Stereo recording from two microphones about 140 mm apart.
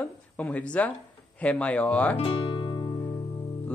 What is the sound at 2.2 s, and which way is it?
Music, 40° left (ahead or behind).